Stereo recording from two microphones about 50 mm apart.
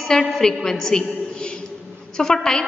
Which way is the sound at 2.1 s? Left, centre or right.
Centre.